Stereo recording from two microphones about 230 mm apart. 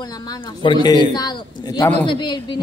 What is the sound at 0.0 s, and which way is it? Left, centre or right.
A man's voice, centre.